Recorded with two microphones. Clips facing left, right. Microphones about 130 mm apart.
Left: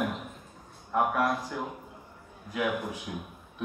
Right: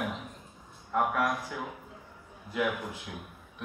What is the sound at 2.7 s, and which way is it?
Speech, 20° left (ahead or behind).